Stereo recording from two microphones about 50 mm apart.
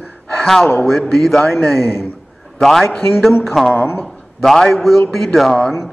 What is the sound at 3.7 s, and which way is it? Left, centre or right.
Speech, left.